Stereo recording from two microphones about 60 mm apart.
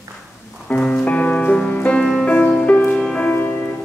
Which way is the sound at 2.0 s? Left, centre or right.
Centre.